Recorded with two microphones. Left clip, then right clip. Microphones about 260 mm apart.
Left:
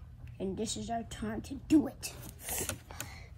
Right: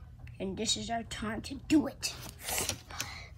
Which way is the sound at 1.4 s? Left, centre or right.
Left.